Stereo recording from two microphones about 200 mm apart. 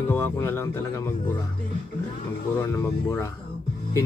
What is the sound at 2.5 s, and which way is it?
Speech, 15° left (ahead or behind).